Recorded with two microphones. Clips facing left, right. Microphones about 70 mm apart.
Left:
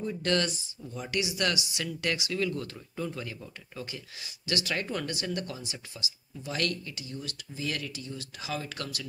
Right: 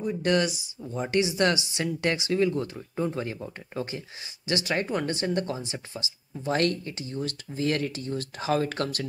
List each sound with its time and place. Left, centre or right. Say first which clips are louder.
0.0 s speech: right 4 dB; centre
0.8 s speech: right 7 dB; right